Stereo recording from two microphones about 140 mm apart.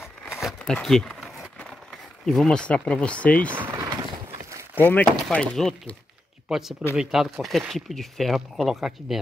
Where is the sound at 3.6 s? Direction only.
20° right (ahead or behind).